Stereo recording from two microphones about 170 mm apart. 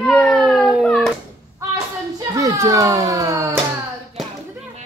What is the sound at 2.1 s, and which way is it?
A child's voice, 20° right (ahead or behind).